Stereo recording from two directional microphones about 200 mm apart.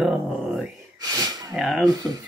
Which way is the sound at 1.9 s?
20° right (ahead or behind).